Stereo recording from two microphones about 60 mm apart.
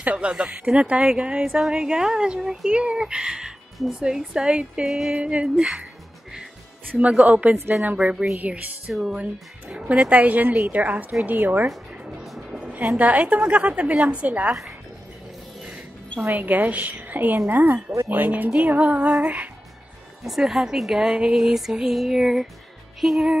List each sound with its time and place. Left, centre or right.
0.0 s speech: right
4.8 s music: centre
5.1 s a woman's voice: right
6.9 s a woman's voice: right
12.0 s music: centre
12.3 s music: centre
12.5 s a woman's voice: right
16.3 s a woman's voice: right
20.2 s speech: centre